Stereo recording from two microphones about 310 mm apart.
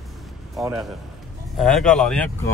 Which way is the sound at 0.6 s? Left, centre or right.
Centre.